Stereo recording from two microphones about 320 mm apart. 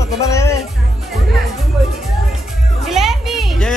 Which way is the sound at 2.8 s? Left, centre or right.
Centre.